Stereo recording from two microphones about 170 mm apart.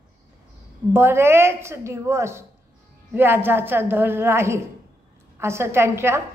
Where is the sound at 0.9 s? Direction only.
15° right (ahead or behind).